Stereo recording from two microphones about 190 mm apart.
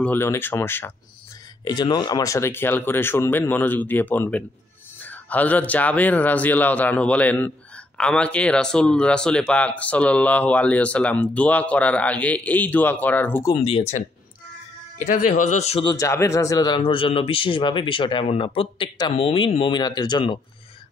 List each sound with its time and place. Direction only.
0.0 s speech: 10° left (ahead or behind)
13.6 s speech: 30° left (ahead or behind)
15.8 s a man's voice: 20° left (ahead or behind)